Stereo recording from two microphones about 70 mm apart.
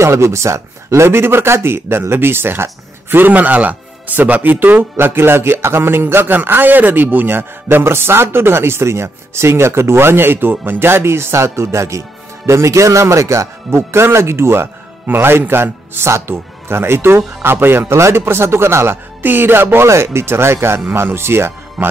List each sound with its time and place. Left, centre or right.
0.0 s speech: right